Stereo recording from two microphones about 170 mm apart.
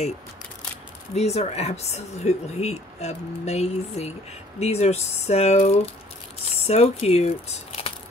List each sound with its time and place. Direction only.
1.1 s speech: 40° left (ahead or behind)